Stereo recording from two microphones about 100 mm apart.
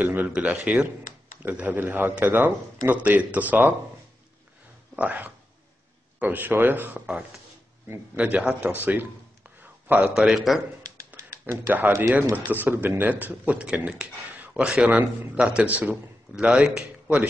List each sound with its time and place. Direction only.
0.0 s speech: 15° right (ahead or behind)
4.9 s speech: 15° right (ahead or behind)
8.2 s speech: 15° right (ahead or behind)
9.6 s a sound: 20° right (ahead or behind)
10.1 s a man's voice: 5° right (ahead or behind)
11.1 s speech: 20° right (ahead or behind)